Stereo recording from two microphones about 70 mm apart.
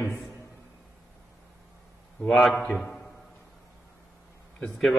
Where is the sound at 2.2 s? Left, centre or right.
Centre.